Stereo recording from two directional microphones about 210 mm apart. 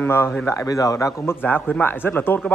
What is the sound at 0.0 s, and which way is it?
A man's voice, 10° left (ahead or behind).